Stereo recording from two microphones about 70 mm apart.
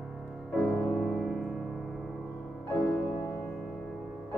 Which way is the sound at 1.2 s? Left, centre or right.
Centre.